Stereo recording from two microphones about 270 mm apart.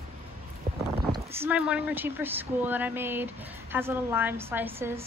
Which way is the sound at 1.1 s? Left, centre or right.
Centre.